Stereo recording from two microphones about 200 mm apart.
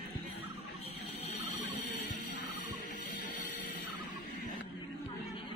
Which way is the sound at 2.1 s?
40° left (ahead or behind).